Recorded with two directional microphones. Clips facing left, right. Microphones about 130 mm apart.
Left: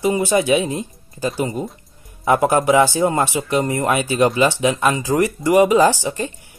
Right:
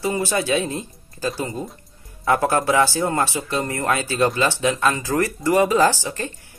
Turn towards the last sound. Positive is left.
turn(degrees=15)  # may be behind; listen again after turning